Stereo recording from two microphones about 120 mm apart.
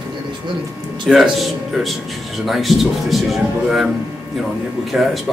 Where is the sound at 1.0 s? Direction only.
Centre (ahead or behind).